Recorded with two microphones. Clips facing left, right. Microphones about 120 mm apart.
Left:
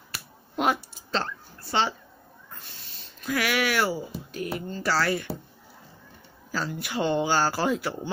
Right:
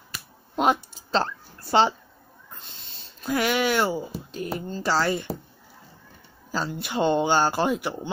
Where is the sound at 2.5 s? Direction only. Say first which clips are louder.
Right 1 dB; 20° right (ahead or behind).